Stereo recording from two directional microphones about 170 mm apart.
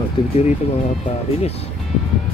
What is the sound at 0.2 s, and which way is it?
Speech, 35° left (ahead or behind).